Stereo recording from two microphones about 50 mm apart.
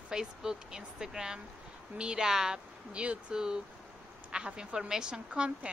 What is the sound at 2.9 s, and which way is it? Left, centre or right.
A woman's voice, right.